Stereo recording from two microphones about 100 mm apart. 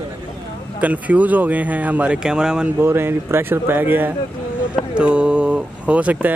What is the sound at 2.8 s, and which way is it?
Speech, 25° right (ahead or behind).